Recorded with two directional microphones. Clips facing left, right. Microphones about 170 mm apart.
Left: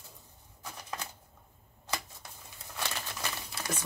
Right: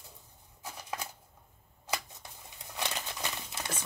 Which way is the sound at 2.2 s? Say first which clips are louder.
Even; 20° right (ahead or behind).